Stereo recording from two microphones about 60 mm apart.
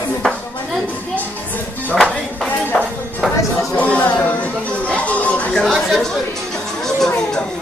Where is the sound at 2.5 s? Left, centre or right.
Left.